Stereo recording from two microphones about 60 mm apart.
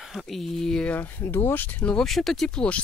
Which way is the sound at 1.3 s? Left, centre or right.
Left.